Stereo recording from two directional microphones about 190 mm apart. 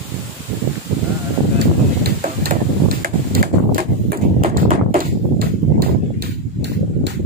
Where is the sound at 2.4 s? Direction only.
50° right (ahead or behind).